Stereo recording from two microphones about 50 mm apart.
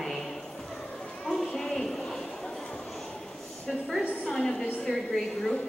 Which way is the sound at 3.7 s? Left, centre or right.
Centre.